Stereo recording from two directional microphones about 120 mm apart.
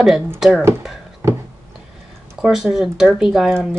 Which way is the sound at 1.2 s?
20° right (ahead or behind).